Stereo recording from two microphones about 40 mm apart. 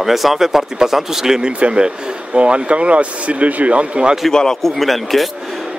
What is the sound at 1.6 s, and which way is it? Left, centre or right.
Speech, right.